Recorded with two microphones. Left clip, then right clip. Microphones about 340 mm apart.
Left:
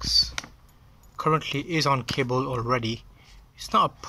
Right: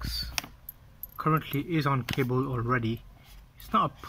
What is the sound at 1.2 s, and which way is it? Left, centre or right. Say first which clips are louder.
Speech: left 4 dB; centre.